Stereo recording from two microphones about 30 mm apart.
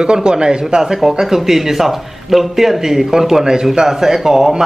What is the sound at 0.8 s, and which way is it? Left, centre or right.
A man's voice, centre.